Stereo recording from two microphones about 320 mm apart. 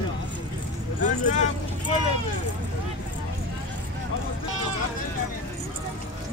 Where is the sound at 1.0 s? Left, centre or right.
Left.